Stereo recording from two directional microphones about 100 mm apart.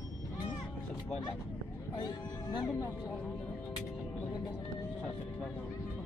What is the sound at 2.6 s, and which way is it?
Speech, 30° left (ahead or behind).